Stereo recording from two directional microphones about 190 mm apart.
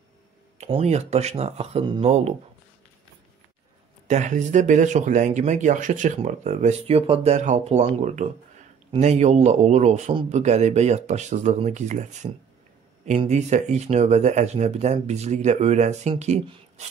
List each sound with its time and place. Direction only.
0.6 s speech: 35° right (ahead or behind)
4.1 s speech: 40° right (ahead or behind)